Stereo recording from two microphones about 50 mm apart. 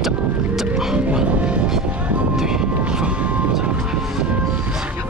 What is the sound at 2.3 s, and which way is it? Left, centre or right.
Vehicle, centre.